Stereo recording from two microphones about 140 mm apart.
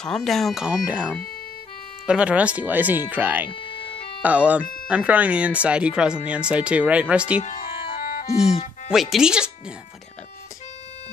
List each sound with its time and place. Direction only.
0.0 s speech: 5° left (ahead or behind)
7.4 s music: 80° left
8.5 s music: 50° left (ahead or behind)
8.9 s speech: 5° right (ahead or behind)